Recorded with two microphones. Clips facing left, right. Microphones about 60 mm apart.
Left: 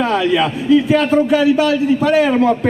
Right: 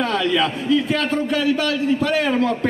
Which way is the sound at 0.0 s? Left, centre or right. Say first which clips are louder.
Left 4 dB; centre.